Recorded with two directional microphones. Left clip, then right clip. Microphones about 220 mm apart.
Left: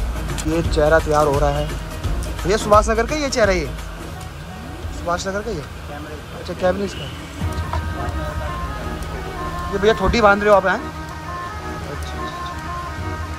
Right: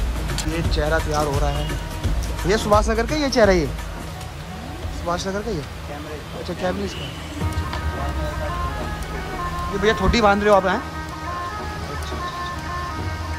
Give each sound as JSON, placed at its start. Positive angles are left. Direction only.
{"t": 0.5, "sound": "speech", "side_deg": -5}
{"t": 5.0, "sound": "speech", "side_deg": -15}
{"t": 6.6, "sound": "speech", "side_deg": -10}
{"t": 9.8, "sound": "speech", "side_deg": -15}